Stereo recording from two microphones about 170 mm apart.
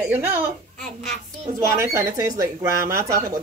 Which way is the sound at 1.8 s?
20° right (ahead or behind).